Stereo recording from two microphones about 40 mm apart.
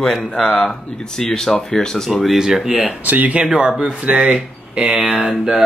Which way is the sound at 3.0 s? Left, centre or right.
Right.